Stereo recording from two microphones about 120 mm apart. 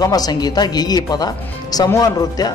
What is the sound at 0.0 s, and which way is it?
Speech, 30° left (ahead or behind).